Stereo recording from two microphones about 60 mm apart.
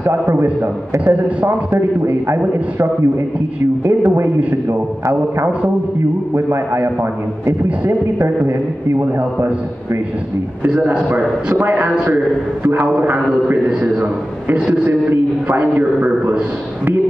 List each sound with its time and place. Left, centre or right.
0.0 s a man's voice: right
1.0 s a man's voice: right
4.0 s a man's voice: right
4.6 s a man's voice: right
10.7 s a man's voice: right